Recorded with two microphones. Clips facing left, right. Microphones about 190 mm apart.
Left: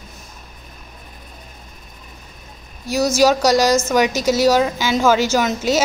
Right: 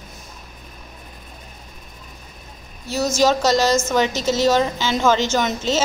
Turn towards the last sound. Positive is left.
turn(degrees=10)  # may be behind; listen again after turning